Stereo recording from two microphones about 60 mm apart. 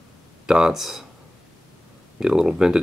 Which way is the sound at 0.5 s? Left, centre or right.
Centre.